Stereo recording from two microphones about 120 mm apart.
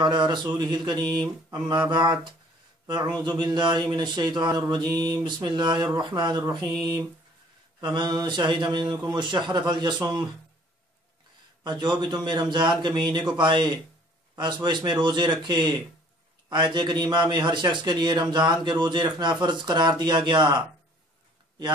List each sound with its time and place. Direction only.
0.0 s a man's voice: 40° right (ahead or behind)
11.6 s a man's voice: 40° right (ahead or behind)